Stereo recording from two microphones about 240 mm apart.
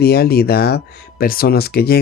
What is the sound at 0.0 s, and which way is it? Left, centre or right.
Speech, left.